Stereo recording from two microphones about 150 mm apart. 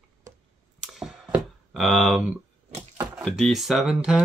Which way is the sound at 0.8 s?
5° right (ahead or behind).